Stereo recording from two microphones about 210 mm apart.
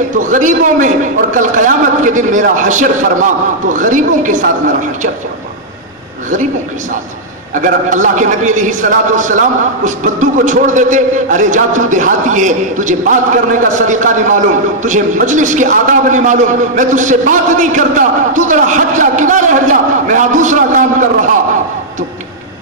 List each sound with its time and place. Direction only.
0.2 s a man's voice: 40° right (ahead or behind)
7.5 s a man's voice: 40° right (ahead or behind)